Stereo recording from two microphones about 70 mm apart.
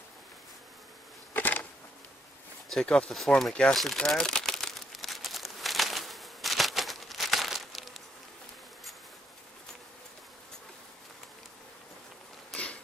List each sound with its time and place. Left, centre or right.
1.3 s bee: left
2.7 s speech: centre
3.7 s crumpling: centre
12.5 s a sound: centre